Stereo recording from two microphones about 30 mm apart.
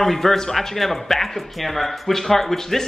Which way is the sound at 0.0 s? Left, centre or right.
Centre.